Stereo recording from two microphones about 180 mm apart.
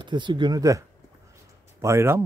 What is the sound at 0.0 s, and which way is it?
Speech, 25° right (ahead or behind).